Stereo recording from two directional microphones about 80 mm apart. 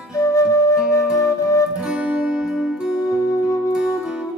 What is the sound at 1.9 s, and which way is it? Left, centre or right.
Music, centre.